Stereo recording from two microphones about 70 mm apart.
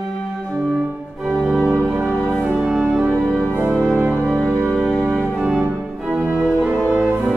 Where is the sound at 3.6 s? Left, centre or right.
Centre.